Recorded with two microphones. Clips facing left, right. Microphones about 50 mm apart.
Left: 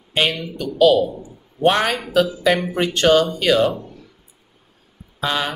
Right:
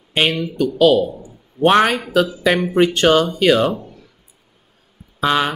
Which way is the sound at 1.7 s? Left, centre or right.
Right.